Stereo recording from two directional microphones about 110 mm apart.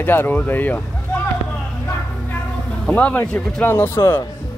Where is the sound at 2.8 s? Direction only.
10° left (ahead or behind).